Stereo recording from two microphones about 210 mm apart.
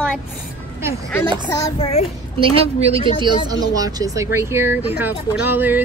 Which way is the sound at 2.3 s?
30° right (ahead or behind).